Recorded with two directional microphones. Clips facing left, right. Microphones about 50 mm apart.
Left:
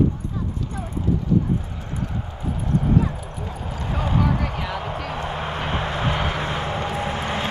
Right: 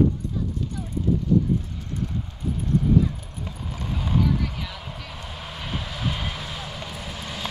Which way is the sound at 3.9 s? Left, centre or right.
Left.